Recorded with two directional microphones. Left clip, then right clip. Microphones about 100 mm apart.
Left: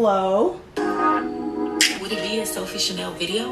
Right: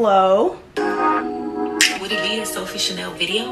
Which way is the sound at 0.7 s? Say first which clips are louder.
Right 2 dB; 15° right (ahead or behind).